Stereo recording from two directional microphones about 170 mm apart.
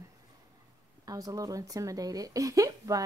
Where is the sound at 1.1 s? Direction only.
20° right (ahead or behind).